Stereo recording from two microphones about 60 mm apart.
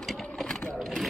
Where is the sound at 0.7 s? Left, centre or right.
Centre.